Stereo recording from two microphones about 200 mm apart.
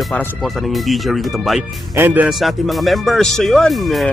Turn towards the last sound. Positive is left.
turn(degrees=0)  # may be behind; listen again after turning